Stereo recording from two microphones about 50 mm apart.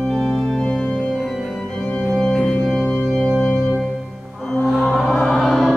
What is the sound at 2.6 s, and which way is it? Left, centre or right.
Organ, centre.